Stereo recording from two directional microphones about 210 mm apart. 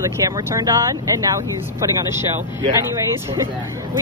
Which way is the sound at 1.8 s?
15° right (ahead or behind).